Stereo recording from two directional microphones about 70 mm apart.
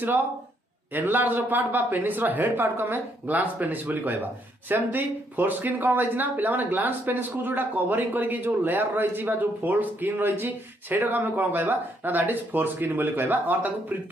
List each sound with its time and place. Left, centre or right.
0.9 s speech: right